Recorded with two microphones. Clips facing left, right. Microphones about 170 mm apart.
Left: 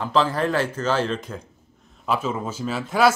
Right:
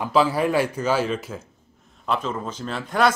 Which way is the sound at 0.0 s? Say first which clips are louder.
Right 1 dB; 10° right (ahead or behind).